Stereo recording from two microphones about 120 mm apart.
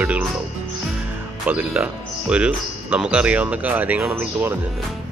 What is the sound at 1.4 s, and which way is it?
Speech, 10° right (ahead or behind).